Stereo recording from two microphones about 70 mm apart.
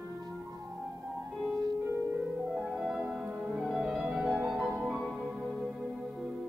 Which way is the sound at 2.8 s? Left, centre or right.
Centre.